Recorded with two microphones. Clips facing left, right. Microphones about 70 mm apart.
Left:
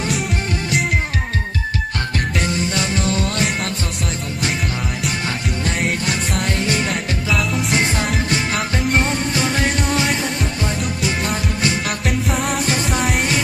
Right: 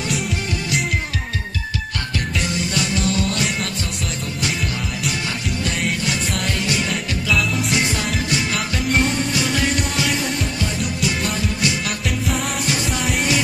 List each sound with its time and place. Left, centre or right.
2.7 s music: left
6.0 s music: left